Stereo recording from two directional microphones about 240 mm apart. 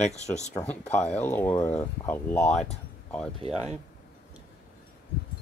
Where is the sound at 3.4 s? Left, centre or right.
Right.